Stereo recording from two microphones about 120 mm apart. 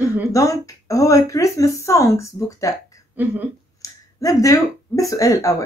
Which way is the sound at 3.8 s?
30° left (ahead or behind).